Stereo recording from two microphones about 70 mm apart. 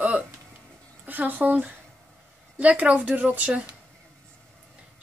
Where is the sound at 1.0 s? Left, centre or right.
Right.